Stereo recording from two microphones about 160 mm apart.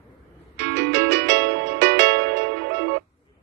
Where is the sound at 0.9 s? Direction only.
90° right.